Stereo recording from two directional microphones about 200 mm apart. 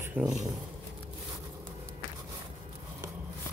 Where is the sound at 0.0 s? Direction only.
5° right (ahead or behind).